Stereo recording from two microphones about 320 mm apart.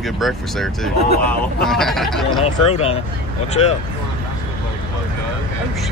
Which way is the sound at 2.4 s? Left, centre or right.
Centre.